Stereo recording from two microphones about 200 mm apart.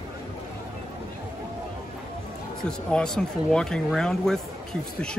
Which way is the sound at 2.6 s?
5° left (ahead or behind).